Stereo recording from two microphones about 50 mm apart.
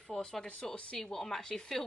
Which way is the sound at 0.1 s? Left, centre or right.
Centre.